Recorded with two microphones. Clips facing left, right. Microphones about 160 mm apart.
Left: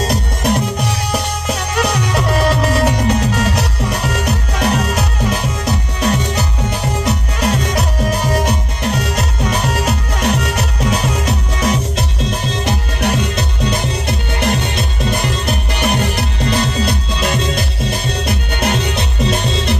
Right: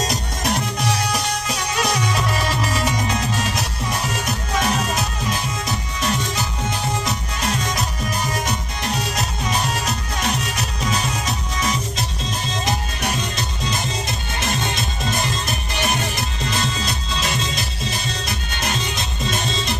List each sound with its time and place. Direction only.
0.0 s music: 60° left (ahead or behind)